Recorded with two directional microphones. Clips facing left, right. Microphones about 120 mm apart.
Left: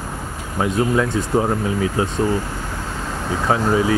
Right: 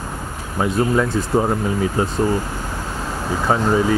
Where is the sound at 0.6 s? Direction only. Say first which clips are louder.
Even; centre (ahead or behind).